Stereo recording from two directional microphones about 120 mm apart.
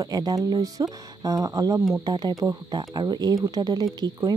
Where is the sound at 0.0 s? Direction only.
35° right (ahead or behind).